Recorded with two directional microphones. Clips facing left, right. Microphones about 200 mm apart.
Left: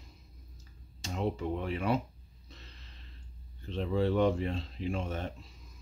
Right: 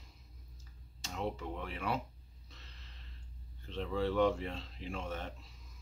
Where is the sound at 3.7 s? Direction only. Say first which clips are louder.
Left 5 dB; 20° left (ahead or behind).